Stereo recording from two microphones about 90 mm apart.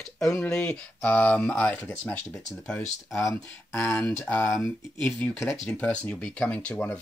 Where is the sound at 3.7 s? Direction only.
30° left (ahead or behind).